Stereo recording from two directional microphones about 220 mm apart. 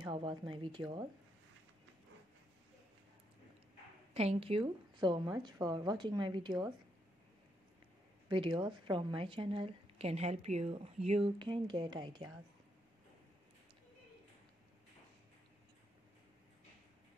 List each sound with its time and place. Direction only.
0.0 s a woman's voice: 20° right (ahead or behind)
4.1 s a woman's voice: 25° right (ahead or behind)
8.3 s a woman's voice: 20° right (ahead or behind)